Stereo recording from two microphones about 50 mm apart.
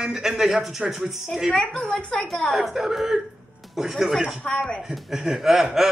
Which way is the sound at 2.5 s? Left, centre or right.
Centre.